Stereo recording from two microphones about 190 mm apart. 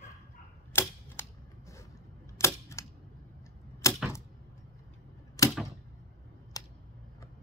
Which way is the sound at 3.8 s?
15° left (ahead or behind).